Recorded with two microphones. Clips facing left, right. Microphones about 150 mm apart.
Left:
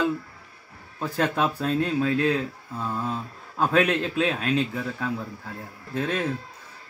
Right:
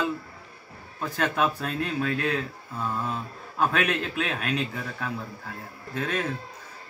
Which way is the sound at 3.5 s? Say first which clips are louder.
Left 3 dB; 30° left (ahead or behind).